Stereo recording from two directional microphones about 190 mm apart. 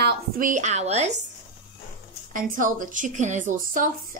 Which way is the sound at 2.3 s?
45° right (ahead or behind).